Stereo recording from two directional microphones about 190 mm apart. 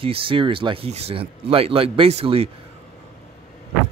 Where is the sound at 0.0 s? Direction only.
30° right (ahead or behind).